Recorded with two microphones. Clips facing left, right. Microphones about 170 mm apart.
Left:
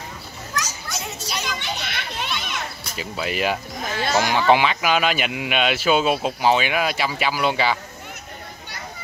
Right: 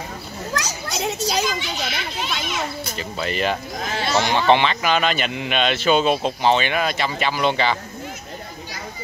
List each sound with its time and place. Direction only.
0.6 s children playing: 70° right (ahead or behind)
1.4 s a child's voice: 60° left (ahead or behind)
3.0 s speech: 5° left (ahead or behind)
4.0 s speech: 50° left (ahead or behind)
4.3 s speech: 10° left (ahead or behind)